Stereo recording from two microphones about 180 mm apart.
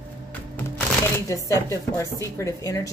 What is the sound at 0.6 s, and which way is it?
Shuffling cards, 10° left (ahead or behind).